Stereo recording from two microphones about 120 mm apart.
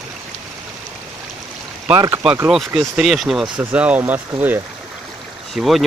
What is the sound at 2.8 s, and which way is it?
Speech, 5° right (ahead or behind).